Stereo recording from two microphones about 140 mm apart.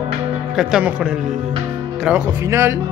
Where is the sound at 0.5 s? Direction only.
5° right (ahead or behind).